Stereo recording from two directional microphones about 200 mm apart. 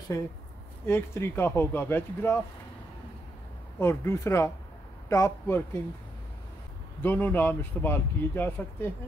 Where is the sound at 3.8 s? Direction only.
10° left (ahead or behind).